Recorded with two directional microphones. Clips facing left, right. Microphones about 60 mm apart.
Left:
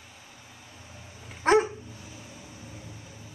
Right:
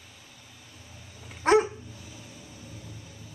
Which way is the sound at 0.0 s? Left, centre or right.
Left.